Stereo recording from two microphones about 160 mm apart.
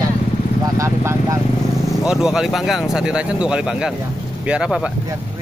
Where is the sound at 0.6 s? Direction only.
20° right (ahead or behind).